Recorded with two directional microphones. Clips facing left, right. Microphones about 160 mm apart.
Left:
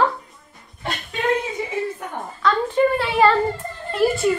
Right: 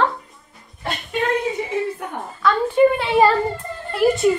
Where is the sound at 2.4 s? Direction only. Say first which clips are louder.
Right 1 dB; 5° right (ahead or behind).